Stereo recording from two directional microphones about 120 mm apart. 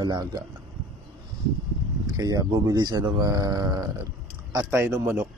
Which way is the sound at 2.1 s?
30° right (ahead or behind).